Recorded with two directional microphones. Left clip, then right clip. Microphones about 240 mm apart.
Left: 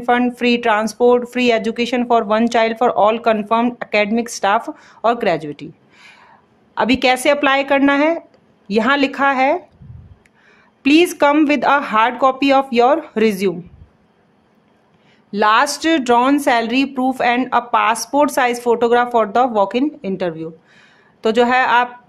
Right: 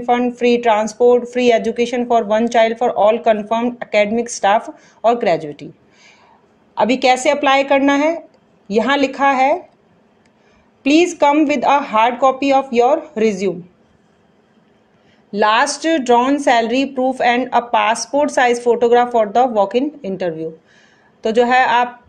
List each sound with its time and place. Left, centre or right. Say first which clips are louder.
0.0 s speech: right 1 dB; centre
10.8 s speech: even; centre
15.3 s speech: even; centre